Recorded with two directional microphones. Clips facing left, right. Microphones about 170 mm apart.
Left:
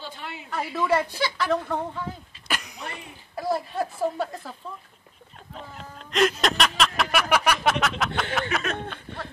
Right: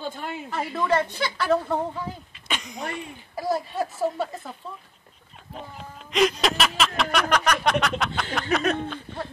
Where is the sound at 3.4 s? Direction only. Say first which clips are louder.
Even; centre (ahead or behind).